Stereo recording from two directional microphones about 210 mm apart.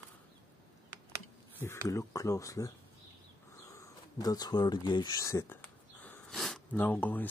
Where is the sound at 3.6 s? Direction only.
15° left (ahead or behind).